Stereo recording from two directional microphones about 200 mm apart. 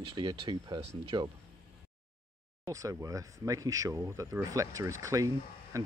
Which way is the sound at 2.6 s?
15° right (ahead or behind).